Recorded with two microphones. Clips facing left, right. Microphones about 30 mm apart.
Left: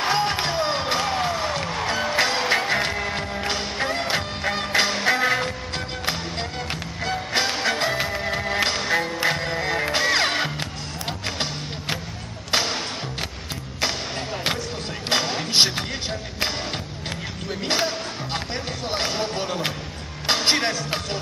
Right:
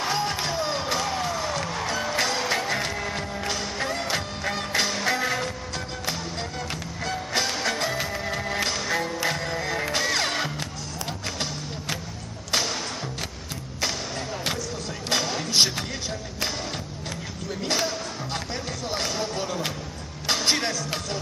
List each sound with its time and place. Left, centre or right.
0.0 s music: left
6.7 s music: left
12.4 s music: left
15.0 s music: left
17.6 s music: left